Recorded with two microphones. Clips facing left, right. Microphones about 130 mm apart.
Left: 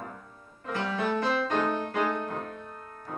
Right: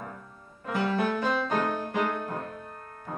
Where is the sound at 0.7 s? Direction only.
5° right (ahead or behind).